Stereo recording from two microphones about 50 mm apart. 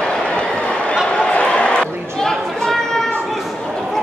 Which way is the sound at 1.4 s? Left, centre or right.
Left.